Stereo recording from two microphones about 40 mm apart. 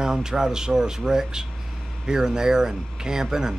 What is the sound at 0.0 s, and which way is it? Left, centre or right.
A man's voice, centre.